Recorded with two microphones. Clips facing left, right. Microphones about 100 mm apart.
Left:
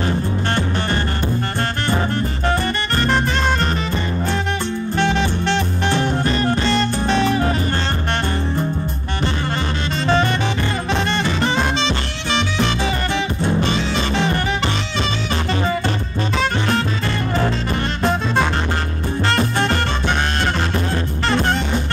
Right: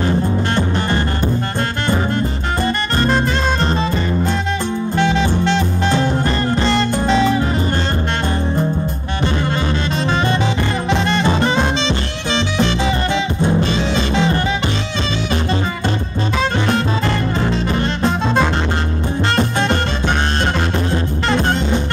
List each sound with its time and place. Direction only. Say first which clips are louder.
0.6 s music: right 3 dB; 20° right (ahead or behind)
10.9 s music: right 5 dB; 25° right (ahead or behind)
13.7 s music: right 3 dB; 25° right (ahead or behind)
17.5 s music: right 3 dB; 25° right (ahead or behind)
21.3 s music: right 1 dB; 25° right (ahead or behind)